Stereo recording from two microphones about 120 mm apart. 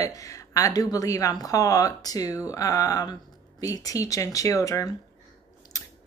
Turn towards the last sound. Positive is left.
turn(degrees=30)  # may be behind; listen again after turning